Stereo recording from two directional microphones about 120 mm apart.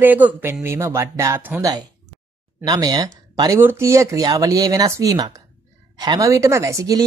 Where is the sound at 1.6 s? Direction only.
30° right (ahead or behind).